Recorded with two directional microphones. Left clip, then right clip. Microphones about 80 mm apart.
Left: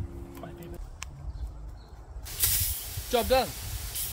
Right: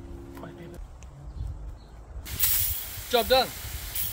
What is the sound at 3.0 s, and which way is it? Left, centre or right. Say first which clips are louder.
Speech: right 3 dB; right.